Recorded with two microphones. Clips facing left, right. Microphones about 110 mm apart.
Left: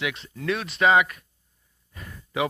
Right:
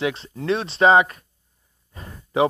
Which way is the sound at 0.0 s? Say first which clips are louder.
Right 4 dB; 30° right (ahead or behind).